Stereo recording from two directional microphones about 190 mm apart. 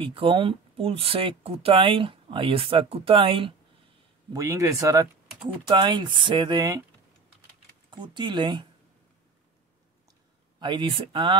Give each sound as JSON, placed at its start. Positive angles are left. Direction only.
{"t": 0.0, "sound": "speech", "side_deg": -25}
{"t": 4.3, "sound": "speech", "side_deg": -15}
{"t": 7.9, "sound": "speech", "side_deg": -25}
{"t": 10.6, "sound": "speech", "side_deg": -25}